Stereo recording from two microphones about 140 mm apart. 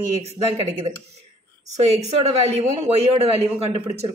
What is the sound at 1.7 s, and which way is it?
A man's voice, 50° right (ahead or behind).